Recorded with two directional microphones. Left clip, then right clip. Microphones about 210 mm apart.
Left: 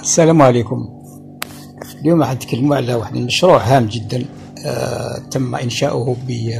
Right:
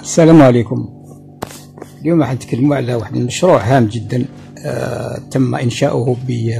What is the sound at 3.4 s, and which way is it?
Speech, 25° right (ahead or behind).